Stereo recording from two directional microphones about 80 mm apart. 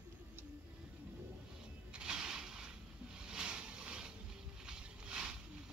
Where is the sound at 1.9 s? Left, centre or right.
Centre.